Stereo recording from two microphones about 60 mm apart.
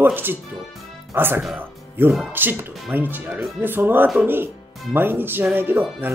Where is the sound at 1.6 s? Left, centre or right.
Right.